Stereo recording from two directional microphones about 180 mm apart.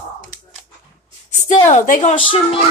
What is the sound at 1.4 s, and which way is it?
Speech, 40° left (ahead or behind).